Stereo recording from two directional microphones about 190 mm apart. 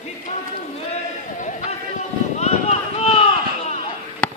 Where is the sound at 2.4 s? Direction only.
35° left (ahead or behind).